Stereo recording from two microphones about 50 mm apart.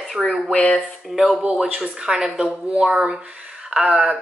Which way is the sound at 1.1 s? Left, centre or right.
Centre.